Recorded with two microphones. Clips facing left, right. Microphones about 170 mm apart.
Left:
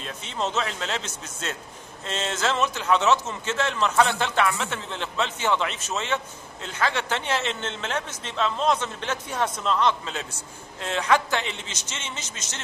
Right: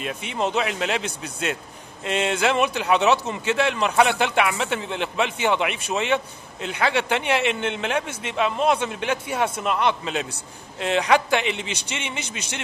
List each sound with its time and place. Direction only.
0.0 s a man's voice: 15° right (ahead or behind)